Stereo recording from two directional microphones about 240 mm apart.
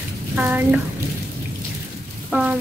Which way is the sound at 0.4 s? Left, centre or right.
Centre.